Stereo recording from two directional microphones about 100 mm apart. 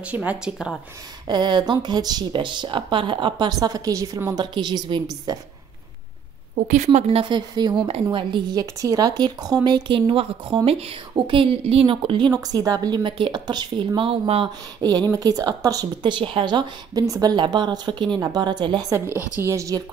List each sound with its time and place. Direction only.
0.0 s speech: 15° right (ahead or behind)
1.2 s speech: 45° right (ahead or behind)
6.9 s speech: 90° right
7.2 s speech: 45° right (ahead or behind)
7.9 s speech: 60° right (ahead or behind)
12.3 s speech: 40° right (ahead or behind); by 14.5 s 70° right (ahead or behind)
14.8 s speech: 45° right (ahead or behind)
18.9 s a woman's voice: 30° right (ahead or behind)